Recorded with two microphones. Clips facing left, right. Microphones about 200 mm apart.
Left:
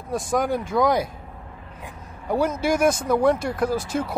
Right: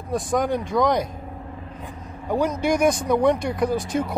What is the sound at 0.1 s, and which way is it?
Speech, centre (ahead or behind).